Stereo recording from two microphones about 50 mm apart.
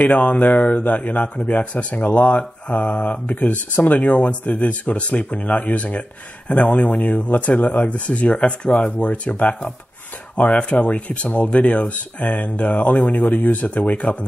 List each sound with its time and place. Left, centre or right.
0.0 s speech: left; by 8.9 s centre
8.9 s speech: left